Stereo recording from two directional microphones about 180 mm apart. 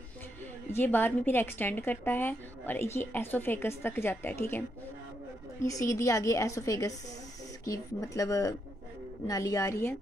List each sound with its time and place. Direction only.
0.7 s a woman's voice: 10° left (ahead or behind)
5.7 s a woman's voice: 20° left (ahead or behind)